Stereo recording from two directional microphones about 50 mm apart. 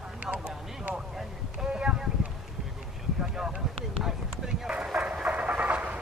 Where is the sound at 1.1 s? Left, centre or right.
Centre.